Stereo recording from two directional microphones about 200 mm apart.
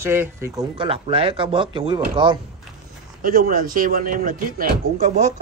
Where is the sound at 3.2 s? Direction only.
45° right (ahead or behind).